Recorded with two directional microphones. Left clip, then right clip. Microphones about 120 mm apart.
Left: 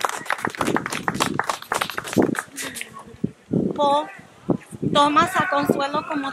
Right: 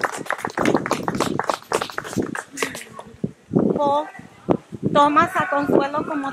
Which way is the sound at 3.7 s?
60° left (ahead or behind).